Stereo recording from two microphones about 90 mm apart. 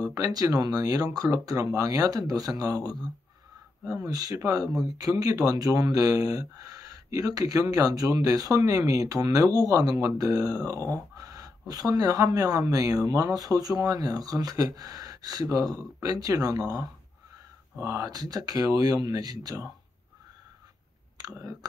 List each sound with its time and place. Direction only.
0.3 s speech: 45° right (ahead or behind)
21.2 s speech: 40° right (ahead or behind)